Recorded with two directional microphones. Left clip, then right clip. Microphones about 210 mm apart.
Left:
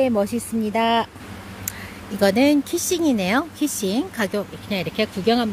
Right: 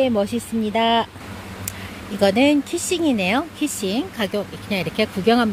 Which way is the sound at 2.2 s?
10° left (ahead or behind).